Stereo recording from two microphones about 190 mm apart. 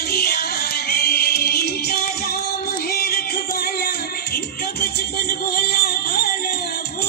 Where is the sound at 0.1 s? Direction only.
55° left (ahead or behind).